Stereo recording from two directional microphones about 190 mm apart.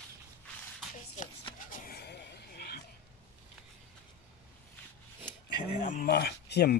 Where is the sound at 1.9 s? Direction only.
60° left (ahead or behind).